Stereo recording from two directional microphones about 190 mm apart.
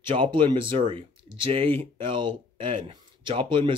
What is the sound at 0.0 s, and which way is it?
Speech, 25° right (ahead or behind).